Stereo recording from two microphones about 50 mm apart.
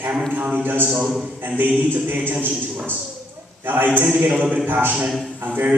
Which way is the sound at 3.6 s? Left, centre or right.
Right.